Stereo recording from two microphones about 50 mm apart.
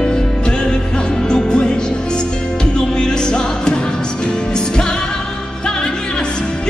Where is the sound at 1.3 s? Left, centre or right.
Centre.